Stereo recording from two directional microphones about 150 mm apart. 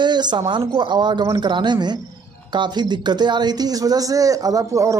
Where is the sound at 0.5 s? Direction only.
30° right (ahead or behind).